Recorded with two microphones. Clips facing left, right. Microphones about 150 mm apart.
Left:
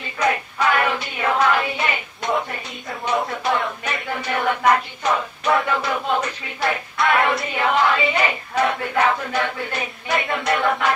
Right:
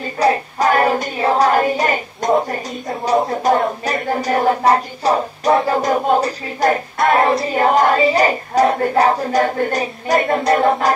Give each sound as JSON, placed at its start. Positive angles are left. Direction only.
{"t": 0.0, "sound": "choir", "side_deg": -35}
{"t": 2.9, "sound": "a sound", "side_deg": -25}
{"t": 3.4, "sound": "choir", "side_deg": -40}
{"t": 7.1, "sound": "choir", "side_deg": -30}